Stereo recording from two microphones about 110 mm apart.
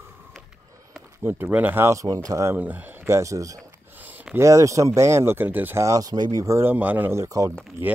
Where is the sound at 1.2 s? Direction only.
20° right (ahead or behind).